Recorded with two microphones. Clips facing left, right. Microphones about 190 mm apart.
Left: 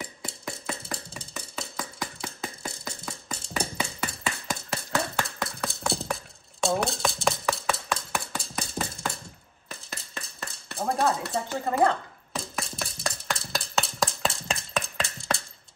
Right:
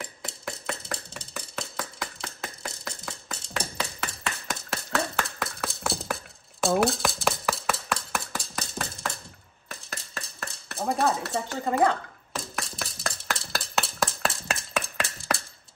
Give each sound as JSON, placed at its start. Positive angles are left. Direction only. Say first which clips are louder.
{"t": 0.0, "sound": "percussion", "louder": "even", "side_deg": 0}
{"t": 4.5, "sound": "chink", "louder": "even", "side_deg": 0}
{"t": 9.7, "sound": "a sound", "louder": "right 1 dB", "side_deg": 0}